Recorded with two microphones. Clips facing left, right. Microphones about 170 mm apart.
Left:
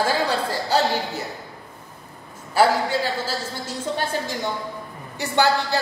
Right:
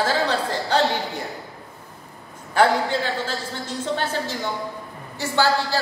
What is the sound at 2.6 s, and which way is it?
A woman's voice, 5° left (ahead or behind).